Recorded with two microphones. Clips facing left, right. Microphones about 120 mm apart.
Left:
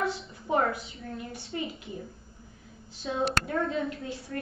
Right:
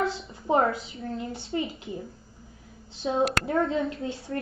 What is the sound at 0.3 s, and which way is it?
A woman's voice, 25° right (ahead or behind).